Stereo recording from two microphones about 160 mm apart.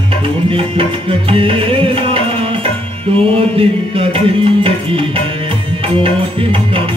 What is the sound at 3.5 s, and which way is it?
Music, 35° right (ahead or behind).